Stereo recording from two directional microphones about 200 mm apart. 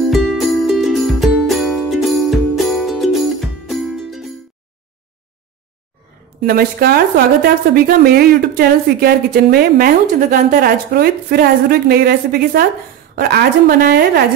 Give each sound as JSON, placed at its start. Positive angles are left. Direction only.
{"t": 0.1, "sound": "music", "side_deg": 0}
{"t": 6.4, "sound": "a woman's voice", "side_deg": -50}